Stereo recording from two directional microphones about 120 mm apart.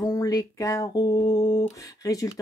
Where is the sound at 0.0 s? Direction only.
30° left (ahead or behind).